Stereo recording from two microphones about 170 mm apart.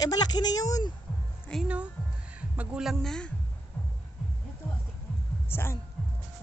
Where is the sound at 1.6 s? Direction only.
5° right (ahead or behind).